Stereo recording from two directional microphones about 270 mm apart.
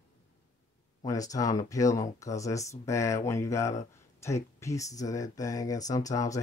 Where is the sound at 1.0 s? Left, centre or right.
Centre.